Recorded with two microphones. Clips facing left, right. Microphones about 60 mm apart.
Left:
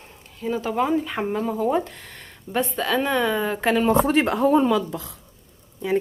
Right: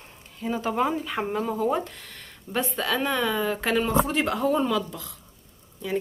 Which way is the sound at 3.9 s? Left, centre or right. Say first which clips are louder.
Left 5 dB; left.